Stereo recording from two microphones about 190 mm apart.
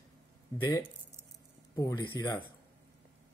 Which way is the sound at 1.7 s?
20° left (ahead or behind).